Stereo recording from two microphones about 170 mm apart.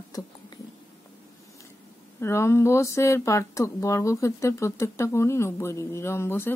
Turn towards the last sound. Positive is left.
turn(degrees=15)  # may be behind; listen again after turning